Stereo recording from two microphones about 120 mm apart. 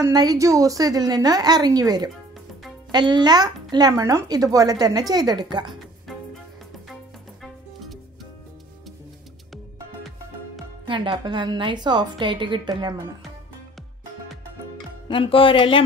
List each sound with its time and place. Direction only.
0.1 s speech: 35° right (ahead or behind)
7.4 s music: centre (ahead or behind)
10.9 s speech: 45° right (ahead or behind)
15.0 s speech: 45° left (ahead or behind)